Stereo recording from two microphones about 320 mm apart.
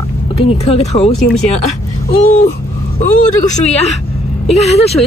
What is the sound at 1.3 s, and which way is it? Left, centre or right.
Speech, centre.